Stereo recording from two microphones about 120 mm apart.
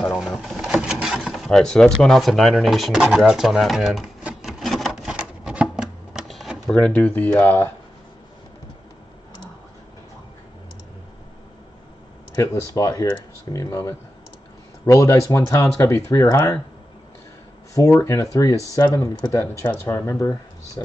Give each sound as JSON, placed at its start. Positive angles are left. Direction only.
{"t": 0.4, "sound": "speech", "side_deg": -5}
{"t": 4.2, "sound": "a sound", "side_deg": -5}
{"t": 6.7, "sound": "speech", "side_deg": 10}
{"t": 12.4, "sound": "speech", "side_deg": 25}
{"t": 17.9, "sound": "speech", "side_deg": 20}